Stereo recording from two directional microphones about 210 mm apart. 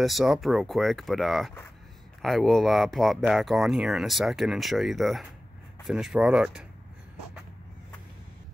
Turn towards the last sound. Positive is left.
turn(degrees=-5)  # may be behind; listen again after turning